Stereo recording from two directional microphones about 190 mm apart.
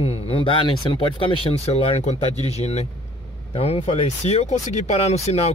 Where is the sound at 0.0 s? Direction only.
30° left (ahead or behind).